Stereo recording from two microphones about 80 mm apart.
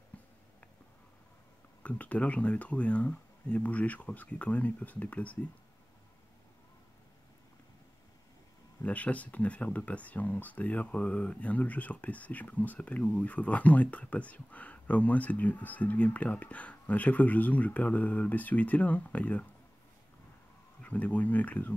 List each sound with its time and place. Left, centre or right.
1.8 s speech: centre
8.8 s speech: centre
20.8 s speech: centre